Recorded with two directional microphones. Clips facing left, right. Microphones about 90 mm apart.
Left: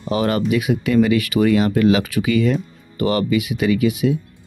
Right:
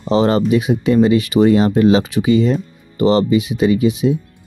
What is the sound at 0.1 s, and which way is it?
Speech, 25° right (ahead or behind).